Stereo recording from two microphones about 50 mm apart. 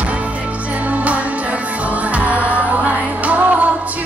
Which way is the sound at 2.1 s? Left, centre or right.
Right.